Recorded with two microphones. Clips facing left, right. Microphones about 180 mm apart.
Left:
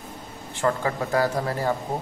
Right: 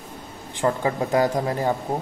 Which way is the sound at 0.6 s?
20° right (ahead or behind).